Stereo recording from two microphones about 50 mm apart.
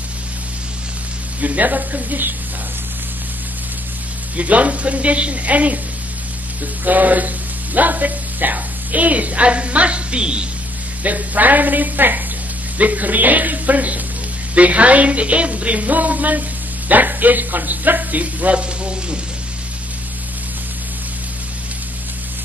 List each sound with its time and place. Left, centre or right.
1.4 s speech: right
4.4 s speech: right
6.8 s speech: right; by 10.5 s centre
11.1 s speech: right